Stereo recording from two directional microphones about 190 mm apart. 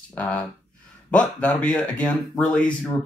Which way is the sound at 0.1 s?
10° left (ahead or behind).